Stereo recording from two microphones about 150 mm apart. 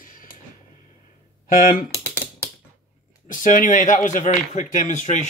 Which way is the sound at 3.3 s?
60° left (ahead or behind).